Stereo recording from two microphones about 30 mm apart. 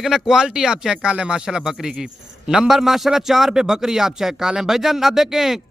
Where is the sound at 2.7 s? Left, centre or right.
Centre.